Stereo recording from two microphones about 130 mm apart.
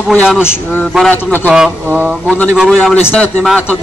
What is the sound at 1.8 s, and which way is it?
Speech, 15° right (ahead or behind).